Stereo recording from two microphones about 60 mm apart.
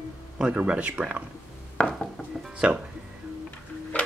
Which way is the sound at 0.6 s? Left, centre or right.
Right.